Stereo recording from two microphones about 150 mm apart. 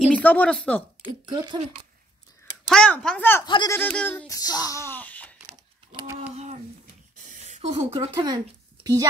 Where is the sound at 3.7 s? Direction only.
10° left (ahead or behind).